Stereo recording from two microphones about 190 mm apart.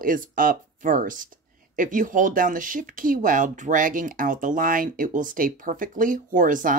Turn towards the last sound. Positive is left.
turn(degrees=-45)  # may be behind; listen again after turning